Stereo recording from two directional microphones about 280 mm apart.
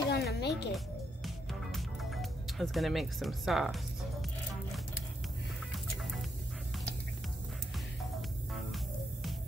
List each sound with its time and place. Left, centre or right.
0.1 s music: left
0.7 s music: centre
8.5 s music: centre